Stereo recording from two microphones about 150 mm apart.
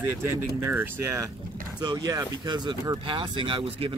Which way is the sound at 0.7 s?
15° right (ahead or behind).